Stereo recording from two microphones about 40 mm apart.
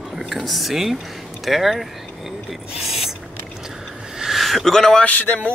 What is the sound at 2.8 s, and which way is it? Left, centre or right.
Mechanisms, centre.